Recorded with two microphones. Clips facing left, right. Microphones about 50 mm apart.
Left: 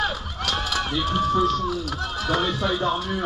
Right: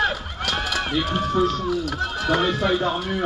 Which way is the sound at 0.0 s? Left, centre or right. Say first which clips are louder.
Right 3 dB; right.